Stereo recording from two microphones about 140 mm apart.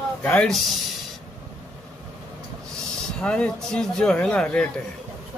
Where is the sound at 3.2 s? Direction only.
5° left (ahead or behind).